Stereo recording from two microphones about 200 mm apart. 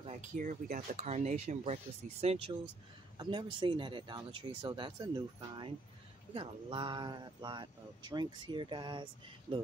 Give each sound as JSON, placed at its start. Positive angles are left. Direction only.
{"t": 0.0, "sound": "speech", "side_deg": -35}